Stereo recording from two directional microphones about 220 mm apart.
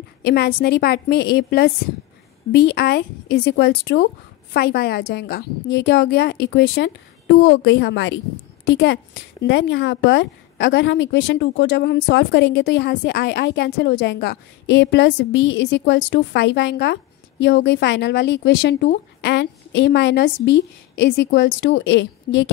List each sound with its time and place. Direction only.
0.2 s a woman's voice: 45° left (ahead or behind)